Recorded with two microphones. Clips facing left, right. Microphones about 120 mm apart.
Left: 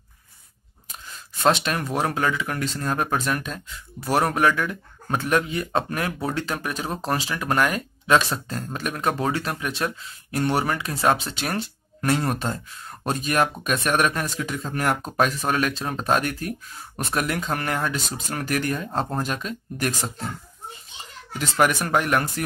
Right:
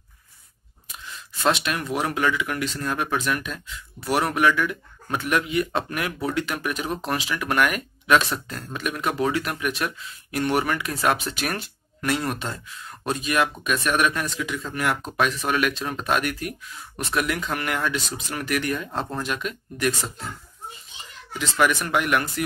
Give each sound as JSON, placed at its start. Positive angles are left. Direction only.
{"t": 1.0, "sound": "speech", "side_deg": 35}
{"t": 21.4, "sound": "speech", "side_deg": 45}